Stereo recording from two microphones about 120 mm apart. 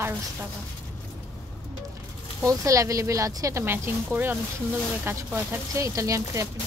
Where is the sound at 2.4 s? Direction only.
25° right (ahead or behind).